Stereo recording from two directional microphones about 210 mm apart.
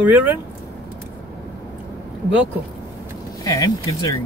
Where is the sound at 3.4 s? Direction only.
15° left (ahead or behind).